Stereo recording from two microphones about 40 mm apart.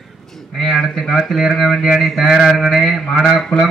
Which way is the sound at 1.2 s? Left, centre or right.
Centre.